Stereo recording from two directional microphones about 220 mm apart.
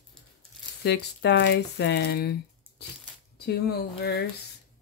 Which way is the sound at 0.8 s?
50° left (ahead or behind).